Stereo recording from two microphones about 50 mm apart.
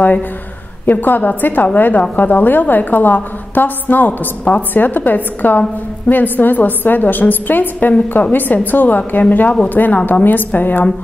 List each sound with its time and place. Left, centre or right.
0.8 s a woman's voice: left